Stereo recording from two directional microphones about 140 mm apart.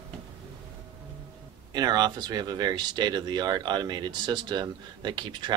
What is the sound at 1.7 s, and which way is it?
Speech, 30° right (ahead or behind).